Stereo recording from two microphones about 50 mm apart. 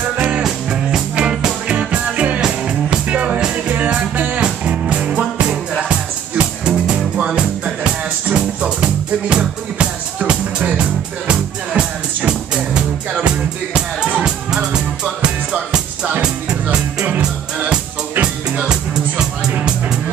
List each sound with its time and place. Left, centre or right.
0.7 s music: centre